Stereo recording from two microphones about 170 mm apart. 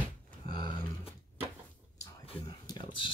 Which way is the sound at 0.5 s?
25° left (ahead or behind).